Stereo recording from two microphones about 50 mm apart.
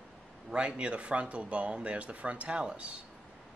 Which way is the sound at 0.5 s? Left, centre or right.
Centre.